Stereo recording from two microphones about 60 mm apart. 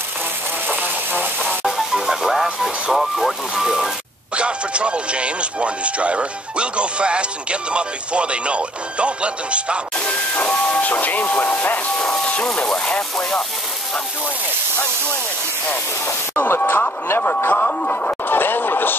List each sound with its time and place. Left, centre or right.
0.7 s a sound: right
2.0 s speech: centre
4.4 s speech: centre
9.9 s hiss: left
12.0 s a sound: centre
12.6 s speech: centre
16.1 s speech: left
17.5 s speech: left